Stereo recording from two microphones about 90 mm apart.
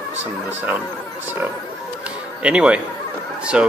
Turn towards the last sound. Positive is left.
turn(degrees=-10)  # may be behind; listen again after turning